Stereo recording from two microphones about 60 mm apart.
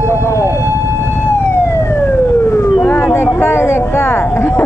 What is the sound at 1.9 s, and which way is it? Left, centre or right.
Emergency vehicle, left.